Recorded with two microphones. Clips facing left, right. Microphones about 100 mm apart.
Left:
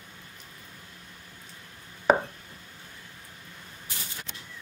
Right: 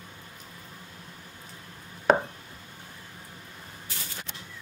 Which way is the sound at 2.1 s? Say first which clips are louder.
Even; 5° left (ahead or behind).